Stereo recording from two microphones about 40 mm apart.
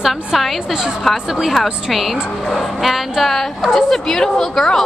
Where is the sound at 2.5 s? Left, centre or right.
Centre.